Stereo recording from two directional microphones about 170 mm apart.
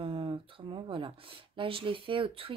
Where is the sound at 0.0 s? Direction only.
30° right (ahead or behind).